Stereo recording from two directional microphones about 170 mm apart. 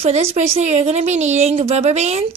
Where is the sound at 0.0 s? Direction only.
35° right (ahead or behind).